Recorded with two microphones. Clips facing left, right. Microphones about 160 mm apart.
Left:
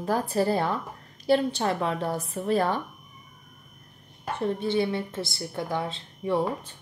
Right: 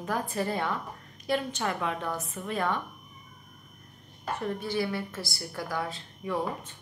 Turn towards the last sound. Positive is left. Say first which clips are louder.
# left 5 dB
turn(degrees=30)  # may be behind; listen again after turning